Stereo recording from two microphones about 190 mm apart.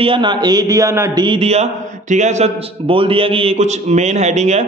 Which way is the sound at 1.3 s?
30° right (ahead or behind).